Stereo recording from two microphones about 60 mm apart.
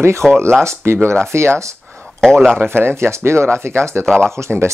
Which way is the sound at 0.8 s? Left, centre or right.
Right.